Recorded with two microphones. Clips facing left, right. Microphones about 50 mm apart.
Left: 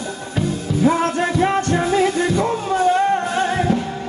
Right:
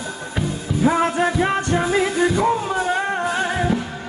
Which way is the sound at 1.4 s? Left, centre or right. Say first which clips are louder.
Left 2 dB; centre.